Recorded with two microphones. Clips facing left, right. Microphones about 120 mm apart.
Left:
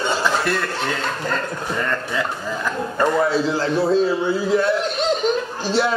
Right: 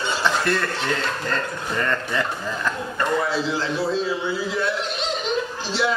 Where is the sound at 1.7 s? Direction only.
5° left (ahead or behind).